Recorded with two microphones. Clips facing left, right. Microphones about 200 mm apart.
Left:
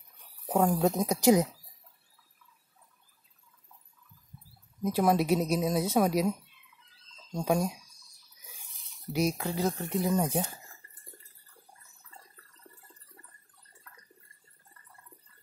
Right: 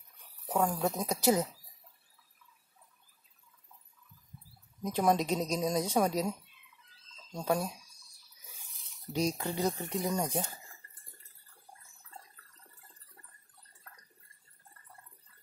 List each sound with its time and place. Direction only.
0.5 s a woman's voice: 25° left (ahead or behind)
4.8 s a woman's voice: 5° left (ahead or behind)
7.3 s a woman's voice: 10° left (ahead or behind)
9.1 s speech: 10° left (ahead or behind)